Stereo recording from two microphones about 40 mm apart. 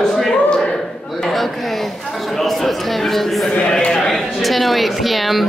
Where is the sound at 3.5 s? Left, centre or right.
Left.